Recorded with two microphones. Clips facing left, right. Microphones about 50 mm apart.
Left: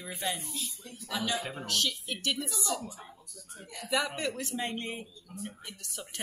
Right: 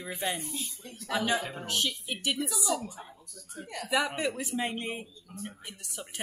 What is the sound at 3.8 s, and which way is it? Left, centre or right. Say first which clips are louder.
A man's voice: right 2 dB; centre.